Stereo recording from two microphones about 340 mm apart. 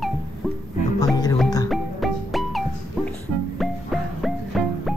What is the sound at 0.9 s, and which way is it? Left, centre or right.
Music, centre.